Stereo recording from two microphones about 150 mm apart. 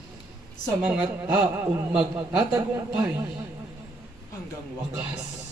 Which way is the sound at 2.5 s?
20° right (ahead or behind).